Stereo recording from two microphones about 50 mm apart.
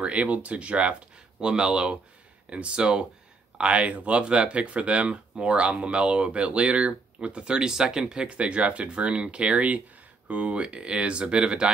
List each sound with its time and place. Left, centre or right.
0.0 s speech: right